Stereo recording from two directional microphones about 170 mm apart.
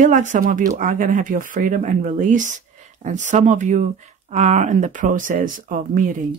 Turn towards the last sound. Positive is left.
turn(degrees=-55)  # may be behind; listen again after turning